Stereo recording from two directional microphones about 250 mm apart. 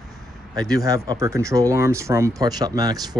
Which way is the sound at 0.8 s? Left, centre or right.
Centre.